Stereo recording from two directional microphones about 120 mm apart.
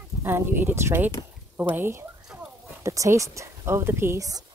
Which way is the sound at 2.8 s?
25° right (ahead or behind).